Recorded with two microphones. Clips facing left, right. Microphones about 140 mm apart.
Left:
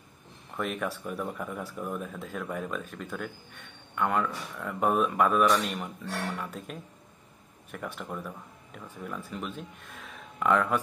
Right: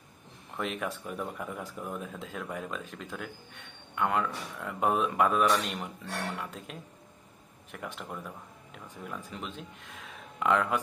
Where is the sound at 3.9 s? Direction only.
20° right (ahead or behind).